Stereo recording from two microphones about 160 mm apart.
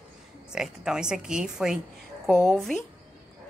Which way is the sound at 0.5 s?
5° right (ahead or behind).